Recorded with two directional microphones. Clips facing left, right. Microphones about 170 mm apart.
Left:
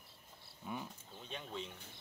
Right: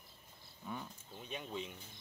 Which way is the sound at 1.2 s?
10° right (ahead or behind).